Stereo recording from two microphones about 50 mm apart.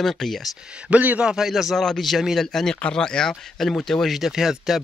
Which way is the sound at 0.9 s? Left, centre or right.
Right.